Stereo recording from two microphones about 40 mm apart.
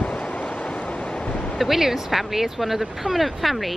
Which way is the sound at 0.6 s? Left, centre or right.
Left.